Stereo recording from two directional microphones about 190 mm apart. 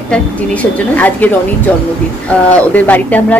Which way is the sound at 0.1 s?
5° left (ahead or behind).